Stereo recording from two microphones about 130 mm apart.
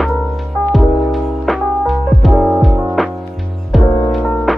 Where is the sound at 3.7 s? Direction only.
Centre (ahead or behind).